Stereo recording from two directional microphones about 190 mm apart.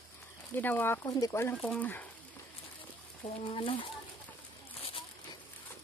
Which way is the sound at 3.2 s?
30° left (ahead or behind).